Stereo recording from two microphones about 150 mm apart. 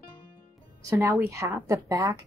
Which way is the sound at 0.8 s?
20° right (ahead or behind).